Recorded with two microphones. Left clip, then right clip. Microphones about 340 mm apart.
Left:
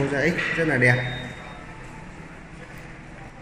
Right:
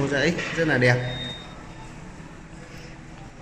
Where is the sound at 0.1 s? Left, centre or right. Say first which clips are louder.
Left 1 dB; centre.